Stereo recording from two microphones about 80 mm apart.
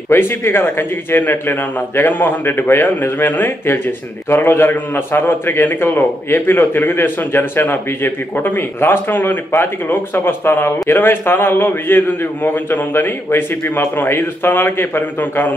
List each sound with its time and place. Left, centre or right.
0.1 s a man's voice: left